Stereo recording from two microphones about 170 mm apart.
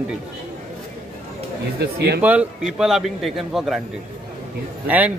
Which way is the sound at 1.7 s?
70° right (ahead or behind).